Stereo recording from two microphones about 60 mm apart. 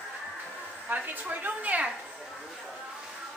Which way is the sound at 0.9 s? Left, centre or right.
Right.